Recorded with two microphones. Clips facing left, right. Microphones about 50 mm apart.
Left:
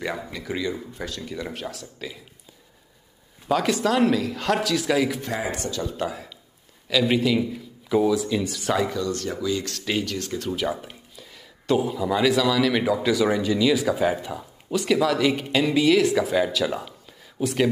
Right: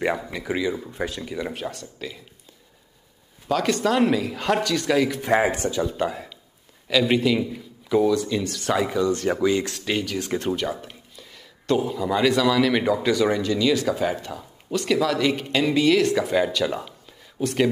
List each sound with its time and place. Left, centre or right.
0.3 s speech: centre
1.3 s speech: centre
3.4 s speech: centre
5.5 s speech: right
5.9 s speech: centre
8.7 s speech: centre
9.2 s speech: right
9.8 s speech: centre